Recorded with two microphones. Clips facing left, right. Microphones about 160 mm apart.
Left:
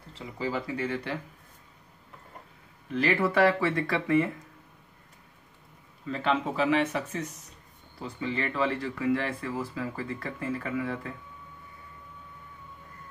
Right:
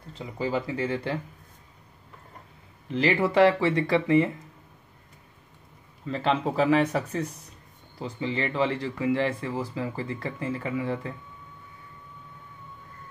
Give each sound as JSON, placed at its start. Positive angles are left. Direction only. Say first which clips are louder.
{"t": 0.4, "sound": "speech", "louder": "right 3 dB", "side_deg": -25}
{"t": 2.9, "sound": "speech", "louder": "right 2 dB", "side_deg": -25}
{"t": 6.0, "sound": "speech", "louder": "right 2 dB", "side_deg": -30}